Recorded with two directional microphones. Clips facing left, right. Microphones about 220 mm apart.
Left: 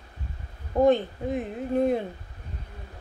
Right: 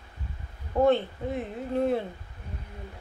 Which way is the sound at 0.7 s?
15° left (ahead or behind).